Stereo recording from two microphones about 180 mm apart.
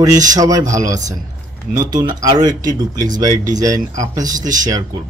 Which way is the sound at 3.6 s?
20° right (ahead or behind).